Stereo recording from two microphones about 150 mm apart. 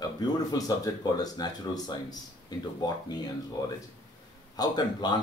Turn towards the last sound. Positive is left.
turn(degrees=30)  # may be behind; listen again after turning